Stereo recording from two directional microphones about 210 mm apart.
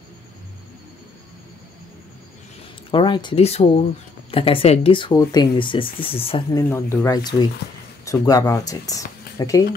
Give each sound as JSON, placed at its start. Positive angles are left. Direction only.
{"t": 2.9, "sound": "speech", "side_deg": 20}
{"t": 6.7, "sound": "speech", "side_deg": 10}